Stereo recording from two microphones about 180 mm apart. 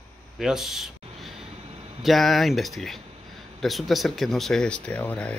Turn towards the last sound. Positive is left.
turn(degrees=10)  # may be behind; listen again after turning